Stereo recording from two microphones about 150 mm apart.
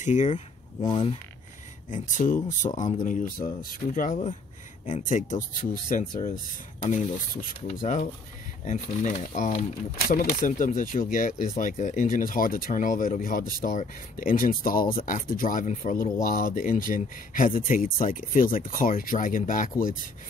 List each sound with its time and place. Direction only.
0.0 s speech: 55° left (ahead or behind)
0.8 s speech: 35° left (ahead or behind)
1.9 s speech: 60° left (ahead or behind)
10.0 s speech: 65° left (ahead or behind)